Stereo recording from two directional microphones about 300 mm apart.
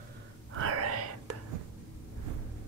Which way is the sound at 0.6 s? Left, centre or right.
Right.